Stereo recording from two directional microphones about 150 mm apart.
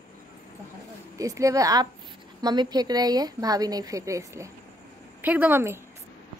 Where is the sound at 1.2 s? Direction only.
20° right (ahead or behind).